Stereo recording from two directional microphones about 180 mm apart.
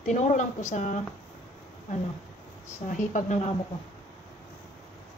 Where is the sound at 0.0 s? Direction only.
40° left (ahead or behind).